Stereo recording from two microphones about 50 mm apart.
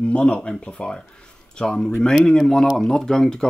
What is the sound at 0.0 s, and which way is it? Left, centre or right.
Speech, left.